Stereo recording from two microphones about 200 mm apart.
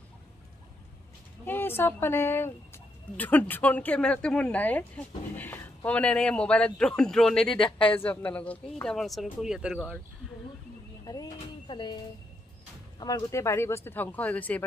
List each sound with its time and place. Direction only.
1.4 s speech: 10° left (ahead or behind)
11.1 s a sound: 20° left (ahead or behind)
13.0 s speech: 15° left (ahead or behind)